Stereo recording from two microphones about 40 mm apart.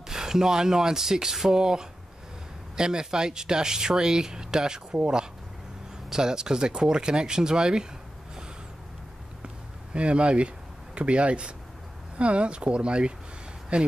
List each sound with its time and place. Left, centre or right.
0.1 s speech: centre
6.0 s speech: centre
9.9 s speech: right